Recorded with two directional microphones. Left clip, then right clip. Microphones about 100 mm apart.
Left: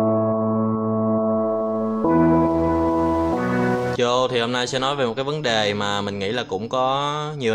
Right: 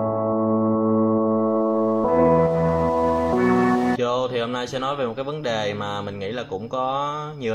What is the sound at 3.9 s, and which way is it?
Speech, 30° left (ahead or behind).